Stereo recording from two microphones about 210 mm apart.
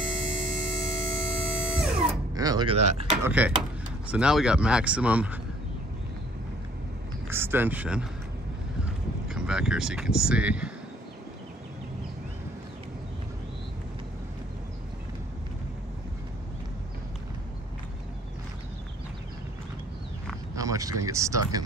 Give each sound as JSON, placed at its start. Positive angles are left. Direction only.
{"t": 0.3, "sound": "music", "side_deg": 0}
{"t": 2.3, "sound": "speech", "side_deg": -20}
{"t": 3.1, "sound": "speech", "side_deg": -5}
{"t": 7.2, "sound": "speech", "side_deg": -10}
{"t": 20.5, "sound": "a sound", "side_deg": -15}
{"t": 21.0, "sound": "speech", "side_deg": -15}